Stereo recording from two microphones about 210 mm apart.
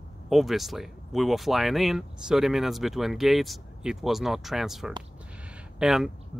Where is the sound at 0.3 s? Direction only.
Centre (ahead or behind).